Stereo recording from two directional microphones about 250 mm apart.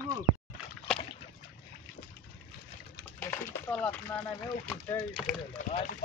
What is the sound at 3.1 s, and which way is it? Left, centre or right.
Speech, centre.